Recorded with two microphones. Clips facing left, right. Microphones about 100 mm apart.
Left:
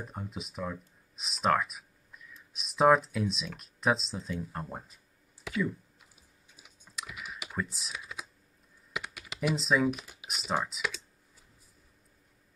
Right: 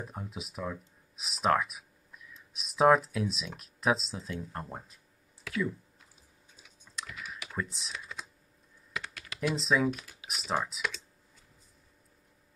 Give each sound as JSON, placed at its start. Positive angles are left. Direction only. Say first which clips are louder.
{"t": 0.0, "sound": "speech", "louder": "even", "side_deg": 0}
{"t": 5.5, "sound": "speech", "louder": "left 1 dB", "side_deg": 20}
{"t": 7.0, "sound": "computer keyboard", "louder": "even", "side_deg": 10}
{"t": 9.6, "sound": "speech", "louder": "even", "side_deg": 0}
{"t": 9.8, "sound": "speech", "louder": "left 1 dB", "side_deg": 15}
{"t": 10.2, "sound": "speech", "louder": "even", "side_deg": 0}